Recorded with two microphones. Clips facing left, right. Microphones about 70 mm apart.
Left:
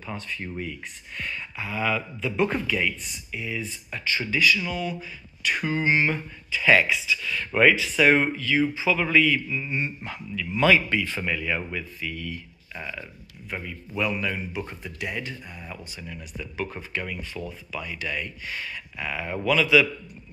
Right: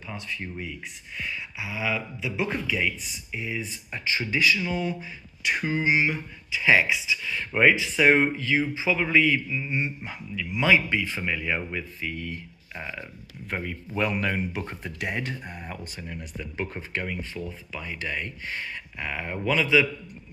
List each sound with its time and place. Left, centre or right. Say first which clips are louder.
0.0 s speech: left 1 dB; centre
3.3 s speech: even; right
13.5 s speech: right 2 dB; right